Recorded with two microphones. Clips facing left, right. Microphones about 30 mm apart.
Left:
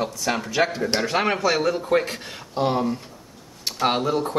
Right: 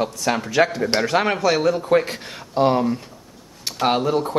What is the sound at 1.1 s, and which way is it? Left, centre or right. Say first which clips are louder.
Speech: right 2 dB; centre.